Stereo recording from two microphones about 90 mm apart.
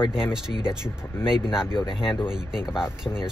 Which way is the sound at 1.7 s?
65° left (ahead or behind).